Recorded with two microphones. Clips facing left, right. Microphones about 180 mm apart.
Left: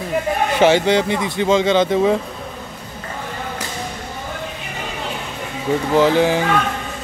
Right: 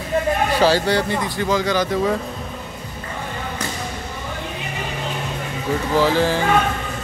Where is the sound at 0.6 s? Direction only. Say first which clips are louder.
Left 5 dB; 20° left (ahead or behind).